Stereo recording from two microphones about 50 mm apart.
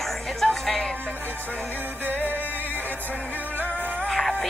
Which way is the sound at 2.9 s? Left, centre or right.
Right.